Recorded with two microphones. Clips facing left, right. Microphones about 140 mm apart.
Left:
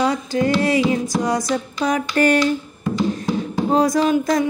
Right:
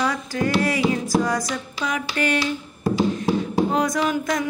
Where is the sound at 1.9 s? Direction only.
45° left (ahead or behind).